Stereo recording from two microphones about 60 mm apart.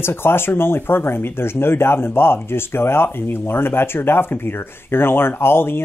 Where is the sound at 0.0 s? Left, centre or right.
Left.